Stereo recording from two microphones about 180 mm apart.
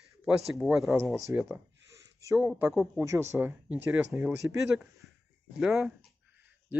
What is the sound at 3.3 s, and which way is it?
Speech, 10° right (ahead or behind).